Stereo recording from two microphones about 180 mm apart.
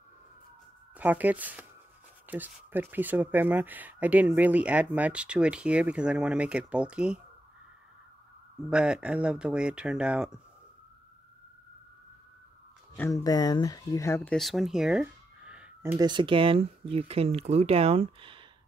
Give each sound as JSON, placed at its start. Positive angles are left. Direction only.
{"t": 0.9, "sound": "speech", "side_deg": -10}
{"t": 8.6, "sound": "speech", "side_deg": -5}
{"t": 13.1, "sound": "speech", "side_deg": 20}
{"t": 14.3, "sound": "speech", "side_deg": 0}
{"t": 16.0, "sound": "speech", "side_deg": -25}